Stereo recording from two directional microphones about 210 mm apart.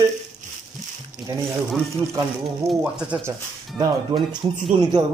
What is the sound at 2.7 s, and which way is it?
Speech, 5° right (ahead or behind).